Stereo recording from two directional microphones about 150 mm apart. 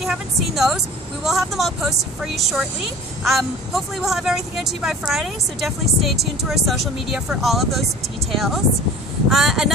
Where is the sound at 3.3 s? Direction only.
Centre (ahead or behind).